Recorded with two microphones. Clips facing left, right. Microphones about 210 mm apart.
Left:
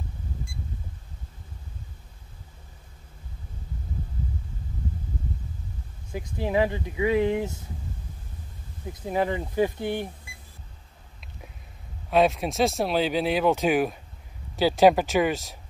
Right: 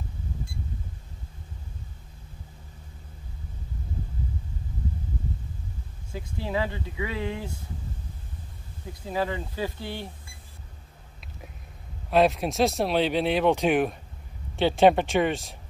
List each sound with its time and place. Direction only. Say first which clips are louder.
6.1 s speech: left 5 dB; 20° left (ahead or behind)
9.0 s speech: left 3 dB; 20° left (ahead or behind)
12.1 s speech: even; centre (ahead or behind)